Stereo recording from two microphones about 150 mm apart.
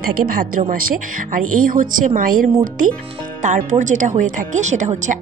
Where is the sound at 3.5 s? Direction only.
55° right (ahead or behind).